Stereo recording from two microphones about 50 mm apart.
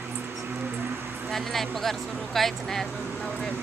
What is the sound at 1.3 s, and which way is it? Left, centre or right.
Speech, centre.